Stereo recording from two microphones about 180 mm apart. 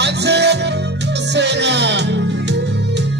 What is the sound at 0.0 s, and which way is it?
Music, 70° right (ahead or behind).